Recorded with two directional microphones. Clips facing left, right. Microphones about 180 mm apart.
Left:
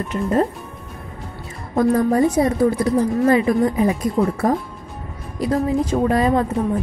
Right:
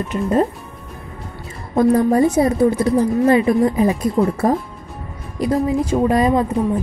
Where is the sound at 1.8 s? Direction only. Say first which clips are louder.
Right 2 dB; 25° right (ahead or behind).